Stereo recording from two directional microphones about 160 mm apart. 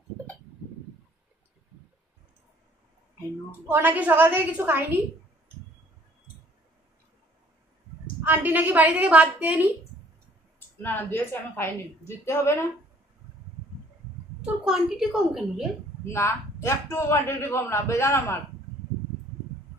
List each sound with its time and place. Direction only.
3.6 s a woman's voice: 10° right (ahead or behind)
8.2 s a woman's voice: 10° right (ahead or behind)
10.8 s a man's voice: 15° left (ahead or behind)
14.4 s a woman's voice: 5° right (ahead or behind)
16.1 s a man's voice: 15° left (ahead or behind)